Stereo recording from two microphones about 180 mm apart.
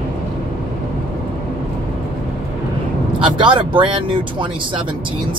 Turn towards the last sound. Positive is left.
turn(degrees=-25)  # may be behind; listen again after turning